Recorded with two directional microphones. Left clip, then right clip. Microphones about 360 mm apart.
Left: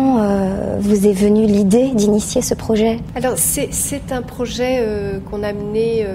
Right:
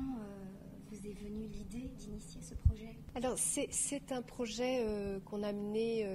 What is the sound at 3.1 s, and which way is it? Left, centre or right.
A woman's voice, right.